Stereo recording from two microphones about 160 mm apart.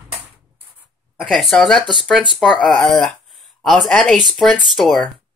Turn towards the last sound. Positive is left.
turn(degrees=0)  # may be behind; listen again after turning